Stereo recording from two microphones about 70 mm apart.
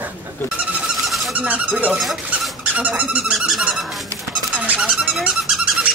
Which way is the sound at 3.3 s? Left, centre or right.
Centre.